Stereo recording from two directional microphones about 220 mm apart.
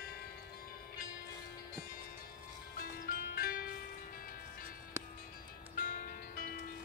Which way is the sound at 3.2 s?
40° left (ahead or behind).